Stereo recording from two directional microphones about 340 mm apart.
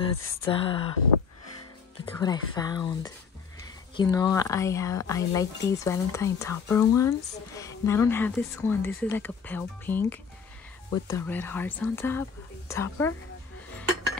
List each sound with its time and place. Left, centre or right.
0.0 s a woman's voice: centre
2.1 s a woman's voice: centre